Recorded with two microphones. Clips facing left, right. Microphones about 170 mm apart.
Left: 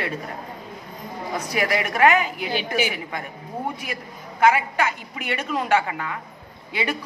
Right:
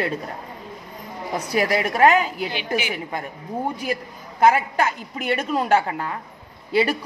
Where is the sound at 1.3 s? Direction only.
35° right (ahead or behind).